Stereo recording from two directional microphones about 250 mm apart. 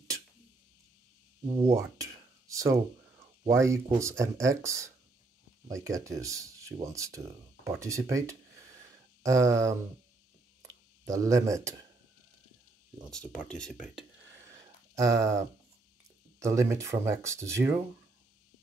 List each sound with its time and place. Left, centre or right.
1.5 s a sound: centre
3.4 s speech: centre
11.1 s speech: centre
13.1 s speech: centre
15.0 s speech: centre